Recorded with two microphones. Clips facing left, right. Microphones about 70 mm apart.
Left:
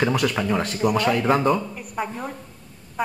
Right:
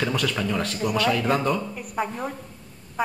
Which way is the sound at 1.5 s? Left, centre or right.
Centre.